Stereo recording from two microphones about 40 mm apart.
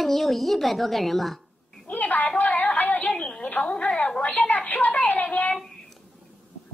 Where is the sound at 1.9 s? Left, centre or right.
Left.